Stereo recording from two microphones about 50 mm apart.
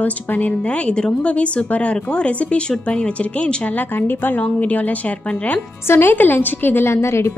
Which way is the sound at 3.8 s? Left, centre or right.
Left.